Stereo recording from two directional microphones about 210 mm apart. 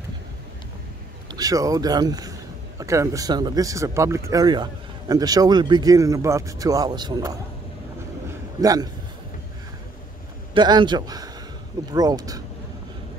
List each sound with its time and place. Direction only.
1.3 s speech: 15° right (ahead or behind)
8.5 s speech: 20° right (ahead or behind)
10.5 s speech: 20° right (ahead or behind)